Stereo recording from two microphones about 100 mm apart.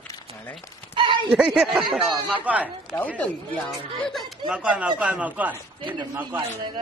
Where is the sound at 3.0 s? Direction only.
15° left (ahead or behind).